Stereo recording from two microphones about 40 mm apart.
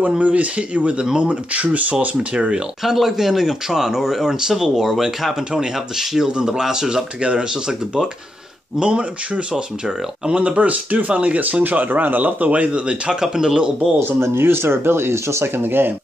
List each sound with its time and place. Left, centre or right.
0.2 s speech: right
2.3 s speech: right
2.8 s speech: centre; by 12.6 s right
12.7 s speech: right
13.2 s speech: centre
14.0 s speech: right